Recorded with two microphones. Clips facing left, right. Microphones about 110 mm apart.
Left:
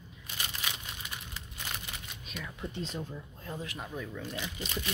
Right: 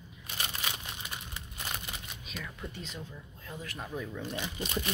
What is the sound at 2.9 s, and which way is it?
Speech, 35° left (ahead or behind).